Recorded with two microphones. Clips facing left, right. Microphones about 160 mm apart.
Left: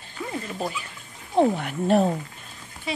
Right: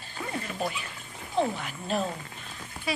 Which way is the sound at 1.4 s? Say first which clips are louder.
Left 8 dB; 55° left (ahead or behind).